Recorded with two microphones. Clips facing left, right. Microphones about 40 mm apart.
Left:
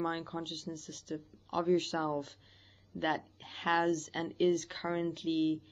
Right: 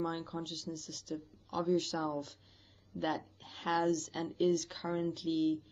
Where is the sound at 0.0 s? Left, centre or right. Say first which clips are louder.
Left 2 dB; left.